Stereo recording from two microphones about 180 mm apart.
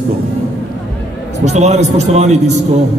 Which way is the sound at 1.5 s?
40° right (ahead or behind).